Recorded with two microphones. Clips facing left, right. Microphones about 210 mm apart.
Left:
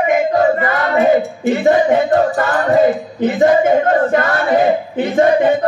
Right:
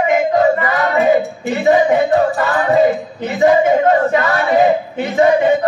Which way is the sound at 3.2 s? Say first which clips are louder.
Left 1 dB; 50° left (ahead or behind).